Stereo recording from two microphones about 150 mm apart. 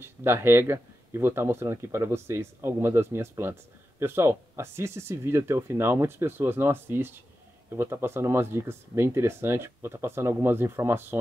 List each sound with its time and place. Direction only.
0.0 s speech: 15° right (ahead or behind)